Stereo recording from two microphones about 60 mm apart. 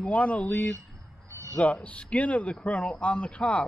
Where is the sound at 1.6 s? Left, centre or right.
Left.